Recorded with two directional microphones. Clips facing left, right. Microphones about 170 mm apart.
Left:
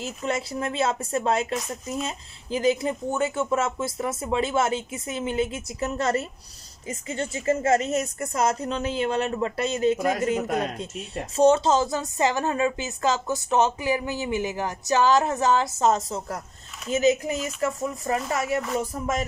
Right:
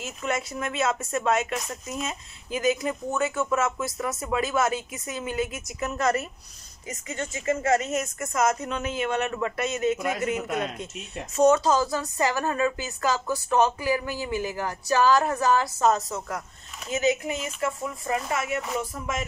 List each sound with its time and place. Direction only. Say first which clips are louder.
0.0 s speech: left 1 dB; 30° left (ahead or behind)